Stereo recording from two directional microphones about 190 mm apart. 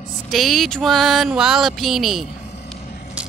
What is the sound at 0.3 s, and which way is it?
Speech, centre (ahead or behind).